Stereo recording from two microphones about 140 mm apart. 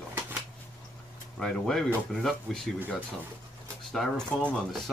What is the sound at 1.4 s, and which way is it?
Speech, 5° left (ahead or behind).